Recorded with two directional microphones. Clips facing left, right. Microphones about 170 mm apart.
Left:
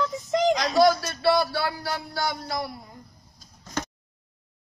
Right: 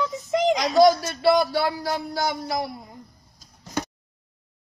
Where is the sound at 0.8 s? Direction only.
15° right (ahead or behind).